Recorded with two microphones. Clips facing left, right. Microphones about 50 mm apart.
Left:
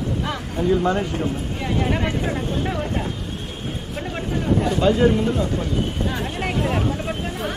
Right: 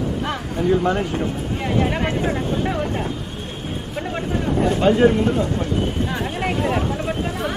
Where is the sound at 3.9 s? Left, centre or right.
Centre.